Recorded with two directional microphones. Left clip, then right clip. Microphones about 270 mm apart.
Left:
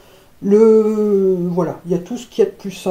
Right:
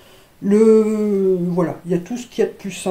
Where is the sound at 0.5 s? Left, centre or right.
Right.